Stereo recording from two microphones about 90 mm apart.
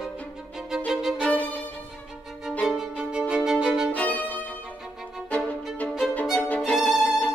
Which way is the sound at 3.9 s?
15° left (ahead or behind).